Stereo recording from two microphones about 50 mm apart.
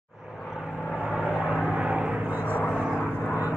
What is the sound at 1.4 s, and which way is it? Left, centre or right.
Vehicle, centre.